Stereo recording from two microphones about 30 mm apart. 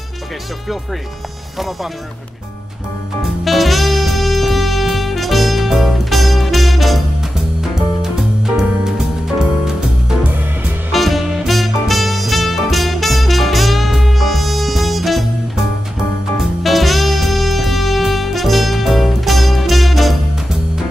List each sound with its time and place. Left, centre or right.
3.4 s music: centre
7.6 s music: centre
10.9 s music: centre
16.6 s music: centre